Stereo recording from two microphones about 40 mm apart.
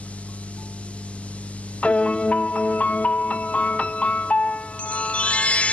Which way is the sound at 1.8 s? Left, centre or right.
Left.